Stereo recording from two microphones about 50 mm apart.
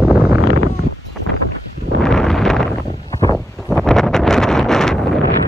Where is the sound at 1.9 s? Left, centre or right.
Centre.